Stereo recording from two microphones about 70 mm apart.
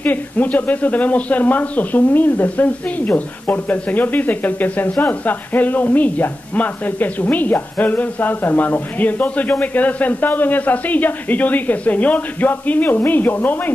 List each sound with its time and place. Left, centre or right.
0.0 s speech: left